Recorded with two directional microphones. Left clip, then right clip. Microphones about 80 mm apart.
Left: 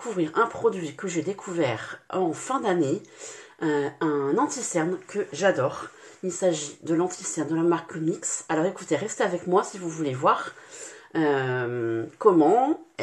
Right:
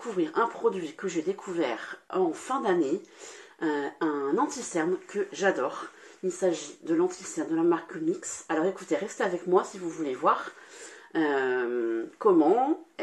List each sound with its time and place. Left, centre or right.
0.0 s speech: left